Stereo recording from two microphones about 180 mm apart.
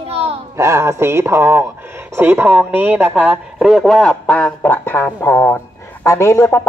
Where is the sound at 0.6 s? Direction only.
15° right (ahead or behind).